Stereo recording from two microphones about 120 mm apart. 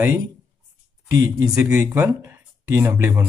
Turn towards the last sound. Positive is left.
turn(degrees=-20)  # may be behind; listen again after turning